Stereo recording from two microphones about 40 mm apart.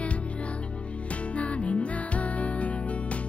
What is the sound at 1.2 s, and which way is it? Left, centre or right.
Music, left.